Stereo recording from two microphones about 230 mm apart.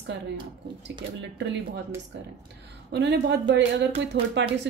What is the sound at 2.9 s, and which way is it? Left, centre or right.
A woman's voice, right.